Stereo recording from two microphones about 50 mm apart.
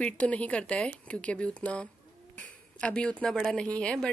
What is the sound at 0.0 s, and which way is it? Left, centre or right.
A woman's voice, left.